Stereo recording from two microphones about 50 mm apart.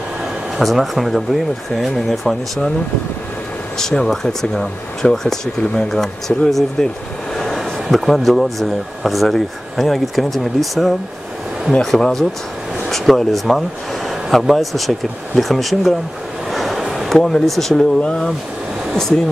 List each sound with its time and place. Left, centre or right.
0.6 s speech: centre
3.7 s speech: centre
7.3 s a sound: centre
8.0 s speech: centre
16.5 s a sound: centre
17.1 s speech: centre
18.9 s speech: centre